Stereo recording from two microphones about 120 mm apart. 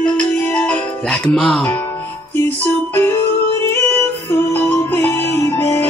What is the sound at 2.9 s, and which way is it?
Music, 20° left (ahead or behind).